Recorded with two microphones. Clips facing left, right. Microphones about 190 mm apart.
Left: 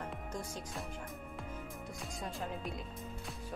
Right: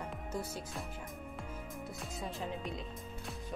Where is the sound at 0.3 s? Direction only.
5° right (ahead or behind).